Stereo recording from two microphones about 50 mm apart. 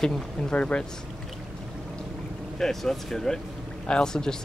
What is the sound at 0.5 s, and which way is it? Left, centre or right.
Speech, left.